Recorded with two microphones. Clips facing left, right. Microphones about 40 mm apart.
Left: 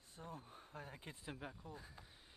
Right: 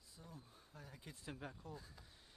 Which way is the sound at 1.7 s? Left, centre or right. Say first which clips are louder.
Left 1 dB; left.